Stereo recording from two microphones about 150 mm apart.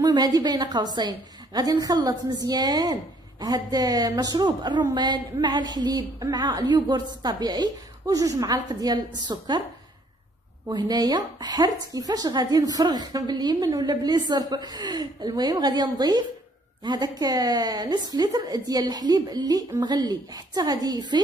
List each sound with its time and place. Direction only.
0.0 s a woman's voice: 25° right (ahead or behind)
10.7 s a woman's voice: 25° right (ahead or behind)